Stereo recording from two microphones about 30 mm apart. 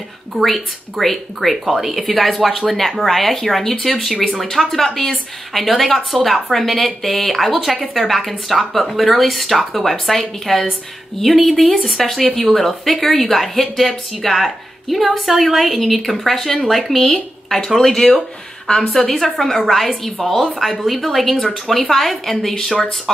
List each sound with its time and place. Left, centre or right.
0.4 s speech: centre
17.7 s speech: centre
22.8 s speech: left